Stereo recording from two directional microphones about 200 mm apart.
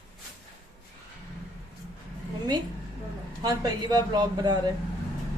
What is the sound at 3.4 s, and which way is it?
Speech, 20° right (ahead or behind).